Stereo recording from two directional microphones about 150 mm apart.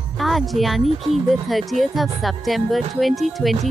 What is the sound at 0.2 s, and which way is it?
Speech, centre (ahead or behind).